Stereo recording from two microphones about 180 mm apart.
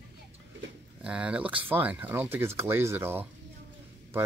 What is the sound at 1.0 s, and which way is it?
Speech, 5° right (ahead or behind).